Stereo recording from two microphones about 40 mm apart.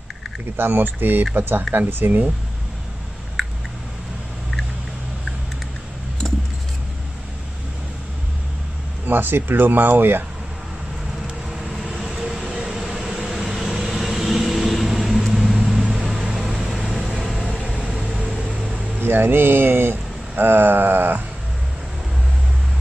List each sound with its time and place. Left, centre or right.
0.6 s speech: right
1.3 s speech: right
3.4 s a sound: centre
9.0 s speech: right
11.6 s vehicle: centre
15.8 s vehicle: centre
17.6 s vehicle: right
18.9 s speech: right